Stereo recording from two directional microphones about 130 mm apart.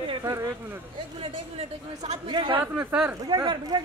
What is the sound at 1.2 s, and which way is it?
Speech, 55° right (ahead or behind).